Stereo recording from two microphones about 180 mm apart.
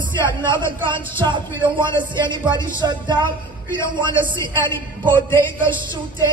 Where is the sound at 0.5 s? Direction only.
25° right (ahead or behind).